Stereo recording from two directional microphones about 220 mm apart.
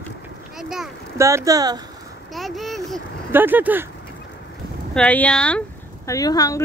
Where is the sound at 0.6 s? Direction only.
Centre (ahead or behind).